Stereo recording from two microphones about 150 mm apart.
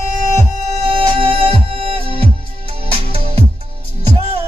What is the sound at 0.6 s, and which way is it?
Music, 40° right (ahead or behind).